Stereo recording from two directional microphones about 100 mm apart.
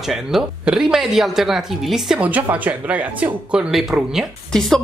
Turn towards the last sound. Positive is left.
turn(degrees=0)  # may be behind; listen again after turning